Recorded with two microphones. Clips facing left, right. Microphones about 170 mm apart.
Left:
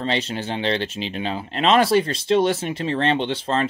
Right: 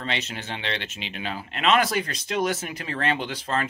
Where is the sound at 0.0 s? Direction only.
30° left (ahead or behind).